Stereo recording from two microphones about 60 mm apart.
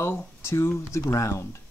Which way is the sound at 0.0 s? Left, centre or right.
Left.